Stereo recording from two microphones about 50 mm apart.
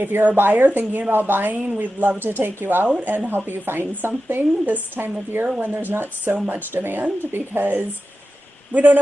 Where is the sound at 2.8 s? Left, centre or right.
Right.